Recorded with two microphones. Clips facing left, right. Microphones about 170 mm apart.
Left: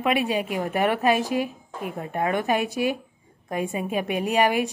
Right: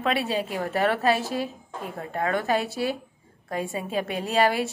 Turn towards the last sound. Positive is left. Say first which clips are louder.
# left 1 dB
turn(degrees=15)  # may be behind; listen again after turning